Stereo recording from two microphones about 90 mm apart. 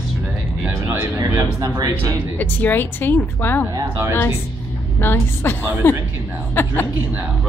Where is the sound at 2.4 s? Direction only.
20° left (ahead or behind).